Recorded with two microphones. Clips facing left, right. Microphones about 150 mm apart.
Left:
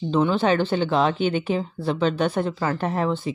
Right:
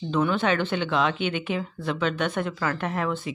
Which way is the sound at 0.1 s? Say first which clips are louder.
Left 3 dB; 30° left (ahead or behind).